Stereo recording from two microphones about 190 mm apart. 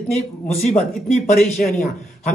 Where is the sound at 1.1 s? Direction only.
40° left (ahead or behind).